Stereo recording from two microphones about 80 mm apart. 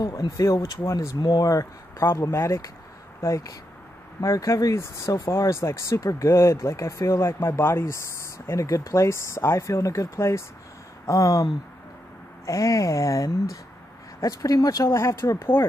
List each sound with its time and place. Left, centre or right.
0.0 s speech: left
12.4 s speech: left
14.9 s speech: left